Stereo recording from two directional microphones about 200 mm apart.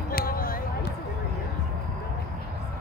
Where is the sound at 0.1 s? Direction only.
45° left (ahead or behind).